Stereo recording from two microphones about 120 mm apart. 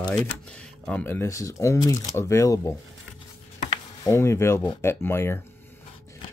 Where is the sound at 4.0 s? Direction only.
25° left (ahead or behind).